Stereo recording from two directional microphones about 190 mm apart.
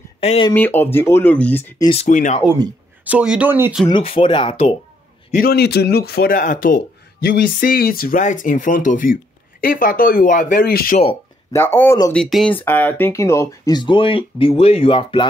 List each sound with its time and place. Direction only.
0.2 s speech: 35° left (ahead or behind)
0.5 s speech: 10° left (ahead or behind)
1.9 s speech: 35° left (ahead or behind)
3.0 s speech: 5° right (ahead or behind)
3.8 s speech: 25° left (ahead or behind)
5.3 s speech: 50° left (ahead or behind)
11.5 s speech: 10° left (ahead or behind); by 15.2 s 30° left (ahead or behind)